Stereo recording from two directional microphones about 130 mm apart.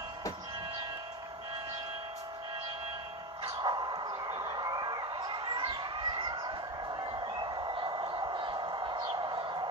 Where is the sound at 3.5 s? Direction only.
35° right (ahead or behind).